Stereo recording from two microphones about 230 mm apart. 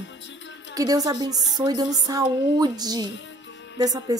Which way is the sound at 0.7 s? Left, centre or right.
Centre.